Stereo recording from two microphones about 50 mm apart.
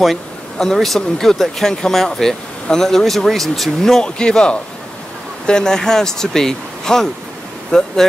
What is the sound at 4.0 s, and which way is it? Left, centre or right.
Speech, centre.